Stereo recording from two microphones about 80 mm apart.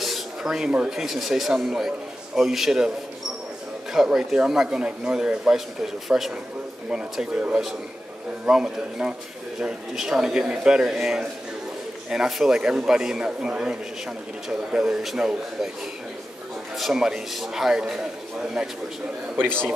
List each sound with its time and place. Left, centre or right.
0.0 s speech: centre
3.9 s a man's voice: centre
7.3 s a man's voice: centre
16.7 s a man's voice: centre
19.3 s a man's voice: right